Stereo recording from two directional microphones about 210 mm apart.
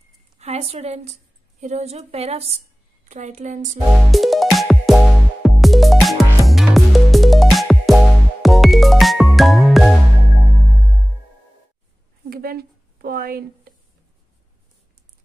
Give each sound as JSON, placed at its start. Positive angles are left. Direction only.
{"t": 0.4, "sound": "a woman's voice", "side_deg": -30}
{"t": 4.1, "sound": "music", "side_deg": 0}
{"t": 12.3, "sound": "a sound", "side_deg": -45}